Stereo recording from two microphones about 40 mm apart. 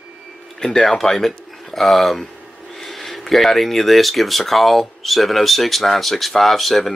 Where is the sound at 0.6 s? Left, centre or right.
Left.